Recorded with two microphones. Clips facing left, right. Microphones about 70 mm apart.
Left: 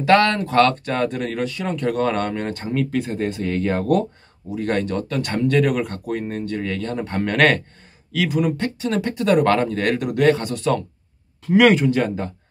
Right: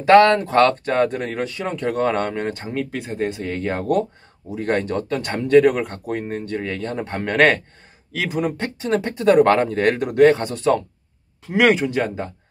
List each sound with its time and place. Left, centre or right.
0.0 s speech: right
4.5 s speech: right
11.4 s speech: centre